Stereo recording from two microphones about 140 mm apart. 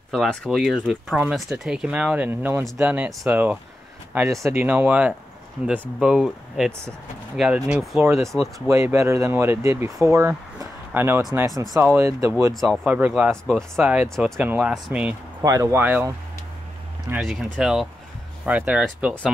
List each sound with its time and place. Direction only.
0.1 s speech: 5° left (ahead or behind)
8.0 s speech: 20° right (ahead or behind)
15.4 s speech: 20° right (ahead or behind)
17.2 s speech: centre (ahead or behind)